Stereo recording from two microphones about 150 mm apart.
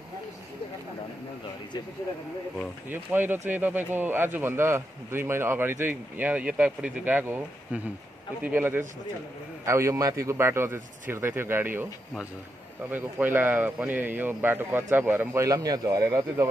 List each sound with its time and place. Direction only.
2.9 s speech: 15° right (ahead or behind)